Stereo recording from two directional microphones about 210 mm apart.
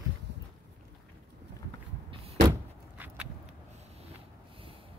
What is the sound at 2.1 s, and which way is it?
Door, 30° right (ahead or behind).